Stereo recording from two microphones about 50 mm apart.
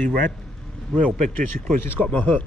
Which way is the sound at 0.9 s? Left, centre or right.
Left.